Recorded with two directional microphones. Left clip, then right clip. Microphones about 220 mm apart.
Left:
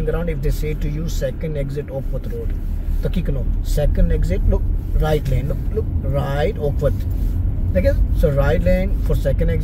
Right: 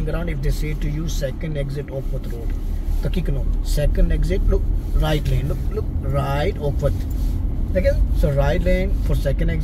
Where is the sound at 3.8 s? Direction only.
15° left (ahead or behind).